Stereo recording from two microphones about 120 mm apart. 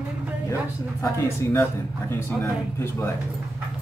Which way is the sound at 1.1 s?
20° left (ahead or behind).